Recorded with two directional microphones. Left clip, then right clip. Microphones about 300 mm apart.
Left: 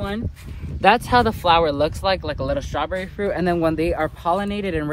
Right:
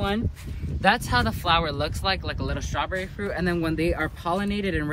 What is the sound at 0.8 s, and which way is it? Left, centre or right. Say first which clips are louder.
Speech: left 6 dB; left.